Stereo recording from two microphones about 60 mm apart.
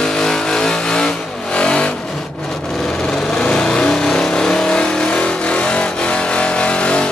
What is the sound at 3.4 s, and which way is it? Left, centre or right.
Vehicle, centre.